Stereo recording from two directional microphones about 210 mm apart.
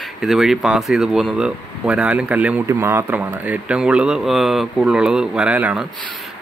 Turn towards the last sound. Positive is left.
turn(degrees=-5)  # may be behind; listen again after turning